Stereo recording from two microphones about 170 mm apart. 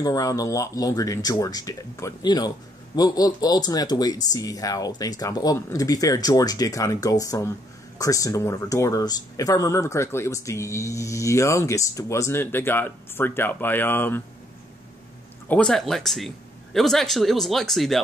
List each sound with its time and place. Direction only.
0.0 s speech: 20° left (ahead or behind)
15.4 s speech: 5° left (ahead or behind)